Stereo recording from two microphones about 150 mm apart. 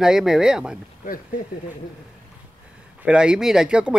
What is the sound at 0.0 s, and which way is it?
Speech, 5° right (ahead or behind).